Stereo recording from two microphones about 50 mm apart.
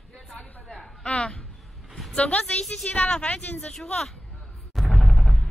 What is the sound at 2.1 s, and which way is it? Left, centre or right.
Speech, left.